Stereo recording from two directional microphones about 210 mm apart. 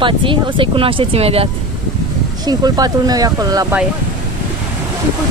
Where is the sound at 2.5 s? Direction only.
20° right (ahead or behind).